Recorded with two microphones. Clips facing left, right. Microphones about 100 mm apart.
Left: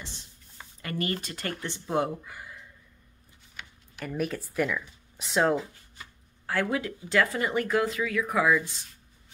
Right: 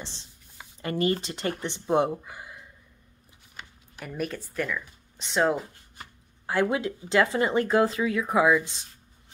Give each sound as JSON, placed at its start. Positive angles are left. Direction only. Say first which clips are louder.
{"t": 0.8, "sound": "speech", "louder": "right 6 dB", "side_deg": -25}
{"t": 4.0, "sound": "speech", "louder": "left 1 dB", "side_deg": 0}
{"t": 6.4, "sound": "speech", "louder": "right 3 dB", "side_deg": -20}